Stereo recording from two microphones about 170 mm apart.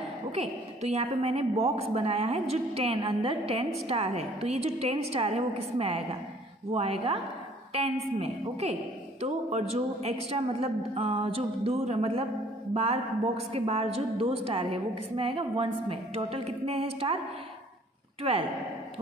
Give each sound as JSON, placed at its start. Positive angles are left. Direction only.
{"t": 0.3, "sound": "a woman's voice", "side_deg": -40}
{"t": 18.3, "sound": "a woman's voice", "side_deg": -35}